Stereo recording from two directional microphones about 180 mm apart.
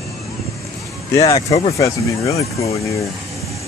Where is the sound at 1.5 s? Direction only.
35° left (ahead or behind).